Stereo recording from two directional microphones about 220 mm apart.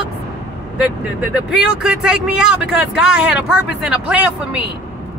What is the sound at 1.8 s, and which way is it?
Speech, 5° right (ahead or behind).